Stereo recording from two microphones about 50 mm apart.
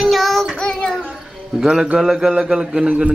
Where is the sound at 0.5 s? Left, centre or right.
Centre.